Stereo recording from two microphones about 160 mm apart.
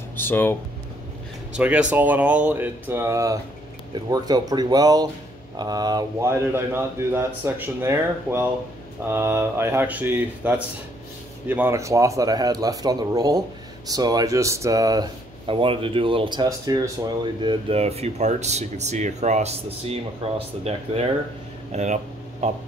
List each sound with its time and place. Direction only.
0.2 s speech: 15° left (ahead or behind)
1.6 s speech: 10° right (ahead or behind); by 22.5 s 45° right (ahead or behind)